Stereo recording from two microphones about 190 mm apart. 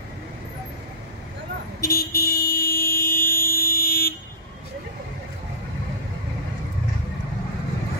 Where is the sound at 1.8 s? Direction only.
50° left (ahead or behind).